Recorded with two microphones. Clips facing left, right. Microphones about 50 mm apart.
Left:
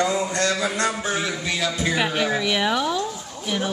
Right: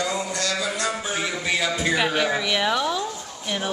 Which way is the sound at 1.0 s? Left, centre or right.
Centre.